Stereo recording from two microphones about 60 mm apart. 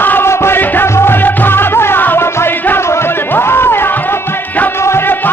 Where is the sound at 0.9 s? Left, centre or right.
Left.